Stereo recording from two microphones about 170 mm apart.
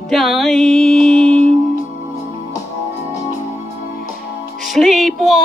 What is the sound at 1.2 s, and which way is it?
Music, 35° right (ahead or behind).